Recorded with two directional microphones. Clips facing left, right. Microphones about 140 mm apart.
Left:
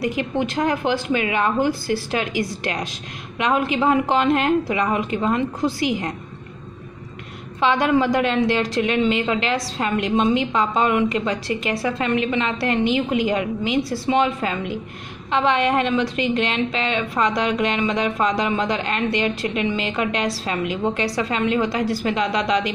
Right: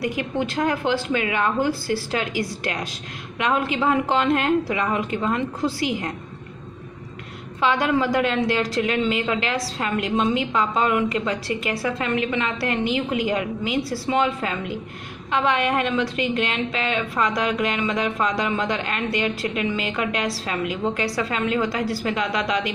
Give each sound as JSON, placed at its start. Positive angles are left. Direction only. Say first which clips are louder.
{"t": 0.1, "sound": "a woman's voice", "louder": "left 2 dB", "side_deg": 20}
{"t": 7.6, "sound": "a woman's voice", "louder": "left 3 dB", "side_deg": 25}